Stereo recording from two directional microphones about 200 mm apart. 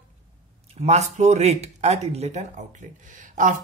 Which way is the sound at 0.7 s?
35° right (ahead or behind).